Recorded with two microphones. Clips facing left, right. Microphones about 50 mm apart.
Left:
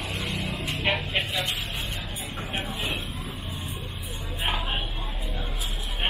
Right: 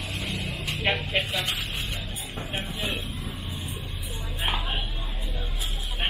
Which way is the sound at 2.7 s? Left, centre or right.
Left.